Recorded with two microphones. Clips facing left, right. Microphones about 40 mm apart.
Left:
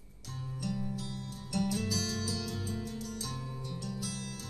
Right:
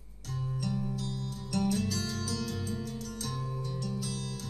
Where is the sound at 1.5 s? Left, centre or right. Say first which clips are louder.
Right 3 dB; right.